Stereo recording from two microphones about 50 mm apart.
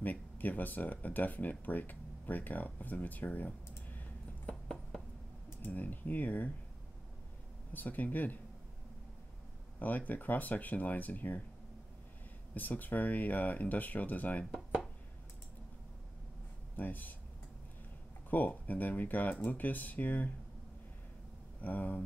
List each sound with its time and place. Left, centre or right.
0.0 s speech: left
4.5 s a sound: centre
5.7 s speech: left
7.7 s speech: left
9.8 s speech: left
12.5 s speech: left
16.7 s speech: left
18.3 s speech: left
21.5 s speech: left